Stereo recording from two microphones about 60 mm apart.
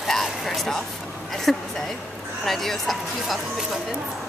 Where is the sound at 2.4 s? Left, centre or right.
Centre.